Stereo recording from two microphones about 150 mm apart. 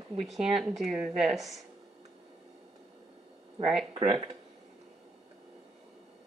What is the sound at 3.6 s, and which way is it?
Speech, centre (ahead or behind).